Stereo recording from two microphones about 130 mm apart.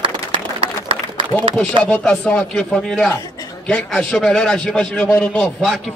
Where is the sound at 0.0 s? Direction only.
45° right (ahead or behind).